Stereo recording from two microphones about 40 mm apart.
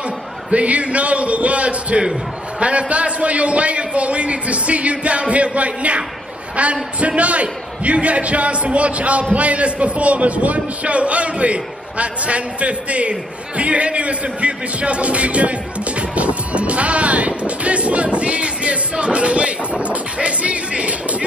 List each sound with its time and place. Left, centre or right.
0.5 s a man's voice: right
16.2 s music: right